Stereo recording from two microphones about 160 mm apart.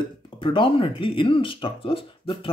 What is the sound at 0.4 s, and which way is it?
Speech, 30° left (ahead or behind).